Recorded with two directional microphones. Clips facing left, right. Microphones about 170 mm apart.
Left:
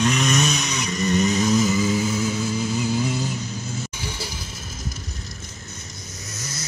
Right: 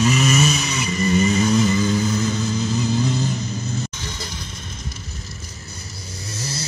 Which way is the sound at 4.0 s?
10° left (ahead or behind).